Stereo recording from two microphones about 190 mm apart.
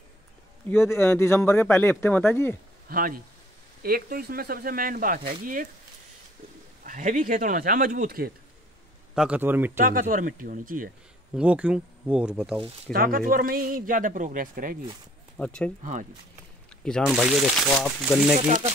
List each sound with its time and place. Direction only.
0.7 s speech: 10° left (ahead or behind)
2.9 s speech: 50° right (ahead or behind)
6.9 s speech: 40° right (ahead or behind)
9.1 s a man's voice: 5° right (ahead or behind)
9.8 s speech: 45° right (ahead or behind)
11.3 s speech: 5° right (ahead or behind)
12.9 s speech: 50° right (ahead or behind)
15.3 s speech: 5° left (ahead or behind)
15.8 s speech: 40° right (ahead or behind)
16.8 s speech: centre (ahead or behind)